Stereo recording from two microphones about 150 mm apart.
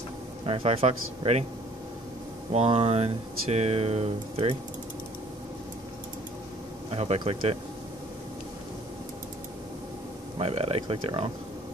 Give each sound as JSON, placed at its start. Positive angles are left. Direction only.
{"t": 0.5, "sound": "speech", "side_deg": -40}
{"t": 2.5, "sound": "speech", "side_deg": -40}
{"t": 6.9, "sound": "speech", "side_deg": -40}
{"t": 10.4, "sound": "speech", "side_deg": -40}